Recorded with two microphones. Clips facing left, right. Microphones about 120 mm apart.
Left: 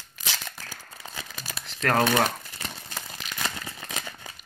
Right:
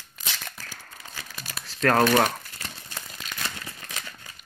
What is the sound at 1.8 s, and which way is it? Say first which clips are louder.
Speech: right 3 dB; 5° left (ahead or behind).